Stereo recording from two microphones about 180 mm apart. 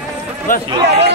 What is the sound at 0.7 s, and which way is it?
Speech, 35° right (ahead or behind).